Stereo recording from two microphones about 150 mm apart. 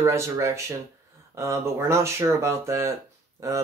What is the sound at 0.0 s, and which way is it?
Speech, 20° right (ahead or behind).